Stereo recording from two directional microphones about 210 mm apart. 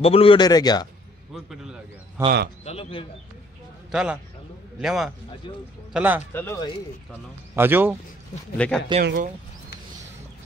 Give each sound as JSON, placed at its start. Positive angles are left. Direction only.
{"t": 0.0, "sound": "speech", "side_deg": 25}
{"t": 1.3, "sound": "speech", "side_deg": 0}
{"t": 2.6, "sound": "speech", "side_deg": 25}
{"t": 3.9, "sound": "a man's voice", "side_deg": -5}
{"t": 6.3, "sound": "speech", "side_deg": 10}
{"t": 7.5, "sound": "speech", "side_deg": -10}
{"t": 8.5, "sound": "a man's voice", "side_deg": 5}
{"t": 9.0, "sound": "speech", "side_deg": -50}